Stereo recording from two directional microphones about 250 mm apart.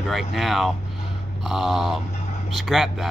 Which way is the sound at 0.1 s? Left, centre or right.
Centre.